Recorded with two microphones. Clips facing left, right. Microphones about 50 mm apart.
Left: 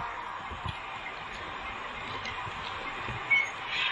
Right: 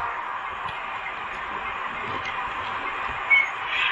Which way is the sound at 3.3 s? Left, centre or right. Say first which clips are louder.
Right 7 dB; right.